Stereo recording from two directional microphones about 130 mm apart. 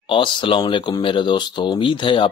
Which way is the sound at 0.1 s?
40° left (ahead or behind).